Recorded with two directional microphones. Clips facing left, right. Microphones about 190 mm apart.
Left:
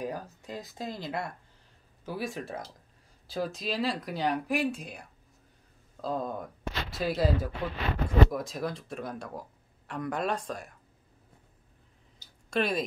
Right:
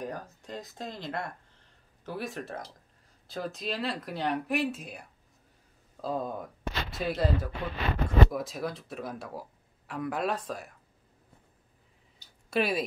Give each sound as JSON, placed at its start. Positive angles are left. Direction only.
{"t": 0.0, "sound": "speech", "side_deg": 5}
{"t": 12.4, "sound": "speech", "side_deg": -5}